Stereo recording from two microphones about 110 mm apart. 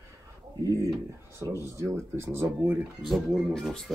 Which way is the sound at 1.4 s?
30° right (ahead or behind).